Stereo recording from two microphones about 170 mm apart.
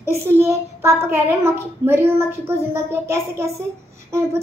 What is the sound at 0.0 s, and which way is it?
A child's voice, 15° right (ahead or behind).